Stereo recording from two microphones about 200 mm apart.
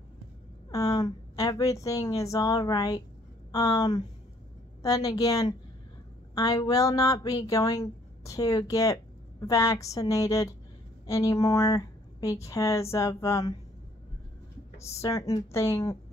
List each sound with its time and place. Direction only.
0.7 s a woman's voice: 20° left (ahead or behind)
14.8 s speech: 15° left (ahead or behind)